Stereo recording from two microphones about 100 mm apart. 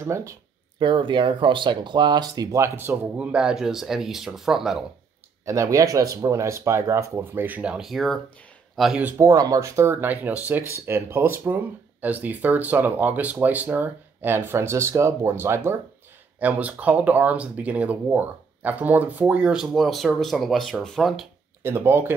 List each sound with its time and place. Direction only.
0.0 s speech: 30° right (ahead or behind)
0.7 s speech: 55° right (ahead or behind); by 3.0 s 25° right (ahead or behind)
3.2 s speech: 10° right (ahead or behind)
5.4 s speech: 30° right (ahead or behind); by 8.9 s centre (ahead or behind)
9.2 s speech: 35° right (ahead or behind)
16.3 s speech: 15° right (ahead or behind); by 21.3 s centre (ahead or behind)
21.6 s speech: 25° right (ahead or behind)